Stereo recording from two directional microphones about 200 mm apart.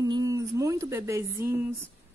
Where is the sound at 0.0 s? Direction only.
15° right (ahead or behind).